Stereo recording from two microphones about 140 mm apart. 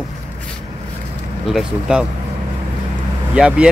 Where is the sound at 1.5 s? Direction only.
5° right (ahead or behind).